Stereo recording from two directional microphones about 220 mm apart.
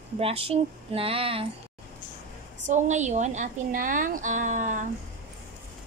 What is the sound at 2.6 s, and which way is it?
A woman's voice, 35° right (ahead or behind).